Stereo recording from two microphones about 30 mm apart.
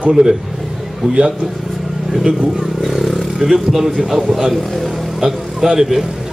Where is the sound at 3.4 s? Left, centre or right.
Centre.